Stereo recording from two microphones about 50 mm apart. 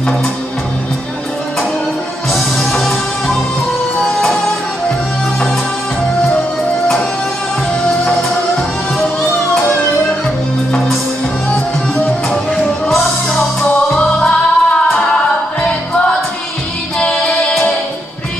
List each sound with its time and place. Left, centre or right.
2.3 s music: centre
12.6 s music: centre
13.6 s music: left
17.0 s music: centre